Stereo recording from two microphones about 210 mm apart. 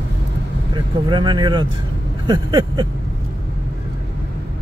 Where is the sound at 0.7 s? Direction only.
20° right (ahead or behind).